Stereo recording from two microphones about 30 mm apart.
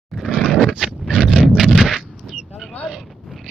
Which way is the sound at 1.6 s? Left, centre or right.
Centre.